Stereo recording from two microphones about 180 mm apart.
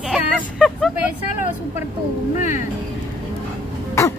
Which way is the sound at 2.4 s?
45° left (ahead or behind).